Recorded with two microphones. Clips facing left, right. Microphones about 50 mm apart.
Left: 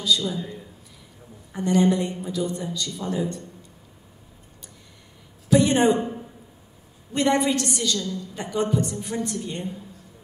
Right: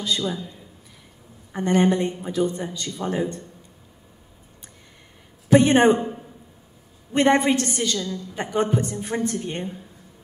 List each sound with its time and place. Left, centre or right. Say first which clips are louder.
0.0 s a woman's voice: left 1 dB; right
1.5 s a woman's voice: right 1 dB; right
5.5 s a sound: right 3 dB; right
7.2 s a woman's voice: right 3 dB; right